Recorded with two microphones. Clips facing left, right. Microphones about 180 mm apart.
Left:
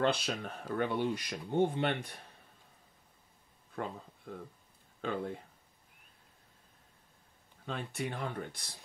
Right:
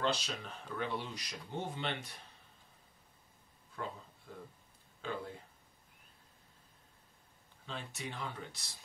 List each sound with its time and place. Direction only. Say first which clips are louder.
0.0 s speech: left 5 dB; 55° left (ahead or behind)
4.3 s speech: left 6 dB; 60° left (ahead or behind)
7.6 s speech: left 6 dB; 55° left (ahead or behind)